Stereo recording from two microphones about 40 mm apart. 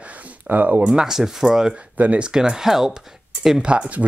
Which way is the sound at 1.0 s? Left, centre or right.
Centre.